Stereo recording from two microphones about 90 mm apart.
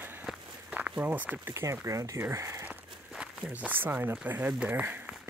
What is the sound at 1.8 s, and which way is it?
Speech, 35° right (ahead or behind).